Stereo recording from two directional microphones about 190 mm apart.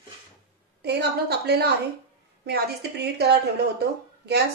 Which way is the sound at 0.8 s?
60° right (ahead or behind).